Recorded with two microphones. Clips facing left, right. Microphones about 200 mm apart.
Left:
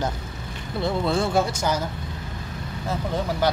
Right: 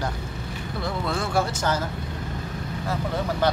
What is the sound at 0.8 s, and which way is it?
Speech, 25° left (ahead or behind).